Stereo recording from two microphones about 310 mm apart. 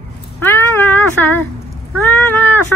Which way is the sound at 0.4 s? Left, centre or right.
Centre.